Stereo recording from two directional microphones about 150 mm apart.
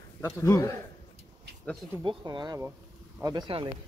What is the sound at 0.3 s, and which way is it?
Speech, 20° left (ahead or behind).